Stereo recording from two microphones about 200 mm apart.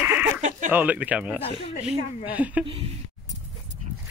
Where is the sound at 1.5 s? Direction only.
30° left (ahead or behind).